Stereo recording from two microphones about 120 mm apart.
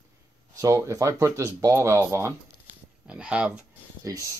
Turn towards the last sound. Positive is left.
turn(degrees=-30)  # may be behind; listen again after turning